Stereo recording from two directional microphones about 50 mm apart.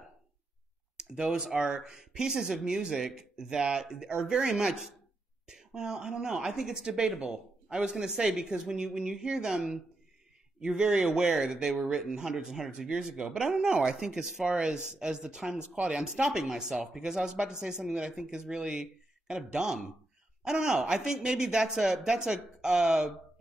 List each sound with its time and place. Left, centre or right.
0.9 s speech: centre